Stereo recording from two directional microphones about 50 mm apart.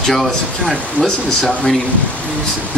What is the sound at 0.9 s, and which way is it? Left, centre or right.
Speech, left.